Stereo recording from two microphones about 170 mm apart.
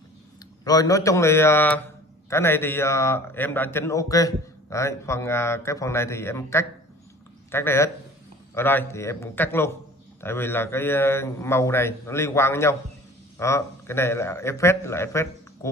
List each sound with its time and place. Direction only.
0.7 s a man's voice: 20° left (ahead or behind)